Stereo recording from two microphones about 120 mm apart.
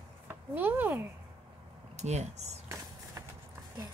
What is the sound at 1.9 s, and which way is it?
Speech, 70° right (ahead or behind).